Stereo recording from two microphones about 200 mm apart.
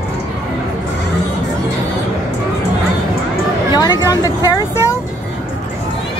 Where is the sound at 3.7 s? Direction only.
20° left (ahead or behind).